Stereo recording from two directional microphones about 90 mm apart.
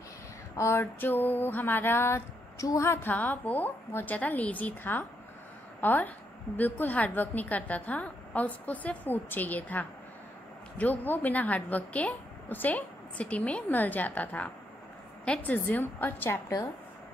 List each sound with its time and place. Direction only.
0.6 s a woman's voice: 30° left (ahead or behind)